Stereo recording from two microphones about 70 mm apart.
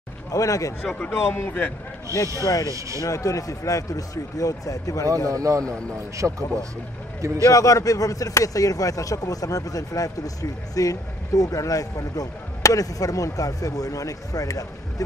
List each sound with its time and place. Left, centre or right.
0.3 s speech: left
1.1 s speech: left
2.6 s speech: right
3.0 s speech: left
5.0 s speech: right
6.2 s speech: right
7.2 s speech: right
7.4 s speech: left